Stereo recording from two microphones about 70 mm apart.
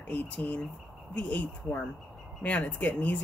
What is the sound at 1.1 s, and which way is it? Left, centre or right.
Speech, left.